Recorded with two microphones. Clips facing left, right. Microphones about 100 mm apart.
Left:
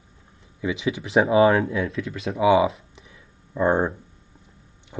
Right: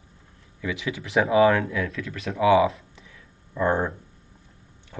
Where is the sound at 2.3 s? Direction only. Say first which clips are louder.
Even; 20° left (ahead or behind).